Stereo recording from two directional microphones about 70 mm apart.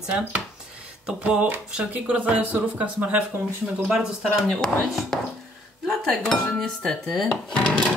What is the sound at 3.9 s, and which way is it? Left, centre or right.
Speech, centre.